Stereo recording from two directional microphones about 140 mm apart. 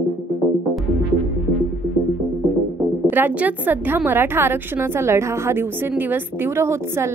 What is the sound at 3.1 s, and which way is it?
A woman's voice, 15° right (ahead or behind).